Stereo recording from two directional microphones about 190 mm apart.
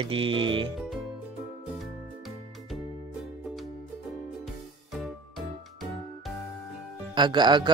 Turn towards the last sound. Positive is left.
turn(degrees=-25)  # may be behind; listen again after turning